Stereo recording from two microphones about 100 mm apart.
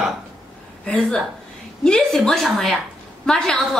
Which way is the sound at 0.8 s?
10° left (ahead or behind).